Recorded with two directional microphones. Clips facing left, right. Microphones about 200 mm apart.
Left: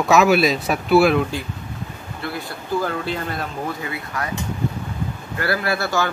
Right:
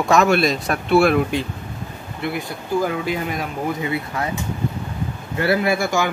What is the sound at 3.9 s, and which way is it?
Speech, 25° right (ahead or behind).